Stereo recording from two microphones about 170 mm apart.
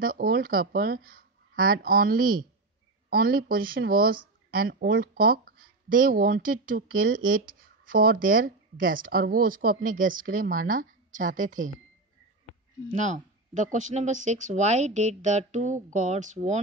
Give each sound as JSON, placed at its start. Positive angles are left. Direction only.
{"t": 0.0, "sound": "speech", "side_deg": -55}
{"t": 12.8, "sound": "speech", "side_deg": -45}